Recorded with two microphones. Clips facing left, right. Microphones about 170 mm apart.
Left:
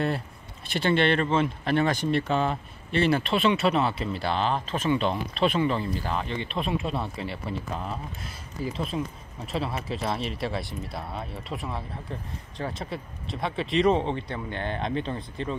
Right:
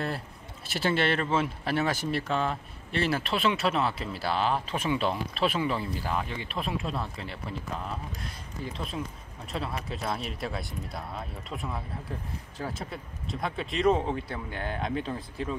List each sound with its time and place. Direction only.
0.7 s speech: 5° right (ahead or behind)